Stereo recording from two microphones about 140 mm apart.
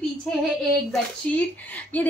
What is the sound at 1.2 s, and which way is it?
Speech, 10° left (ahead or behind).